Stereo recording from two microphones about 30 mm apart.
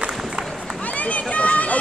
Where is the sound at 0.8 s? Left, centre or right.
Left.